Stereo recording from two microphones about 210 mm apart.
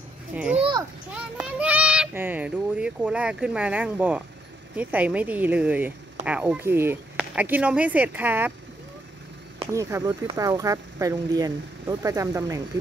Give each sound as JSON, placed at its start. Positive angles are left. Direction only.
{"t": 0.3, "sound": "a sound", "side_deg": -5}
{"t": 1.1, "sound": "child singing", "side_deg": -5}
{"t": 4.7, "sound": "speech", "side_deg": -5}
{"t": 9.7, "sound": "speech", "side_deg": -15}